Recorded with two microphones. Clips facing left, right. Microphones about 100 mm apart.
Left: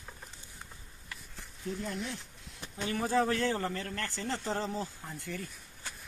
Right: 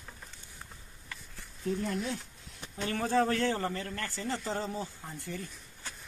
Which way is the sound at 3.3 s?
25° right (ahead or behind).